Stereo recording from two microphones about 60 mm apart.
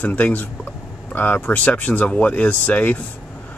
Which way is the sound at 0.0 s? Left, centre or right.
Left.